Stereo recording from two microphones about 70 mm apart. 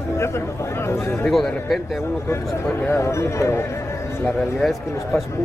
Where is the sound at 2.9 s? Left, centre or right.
Left.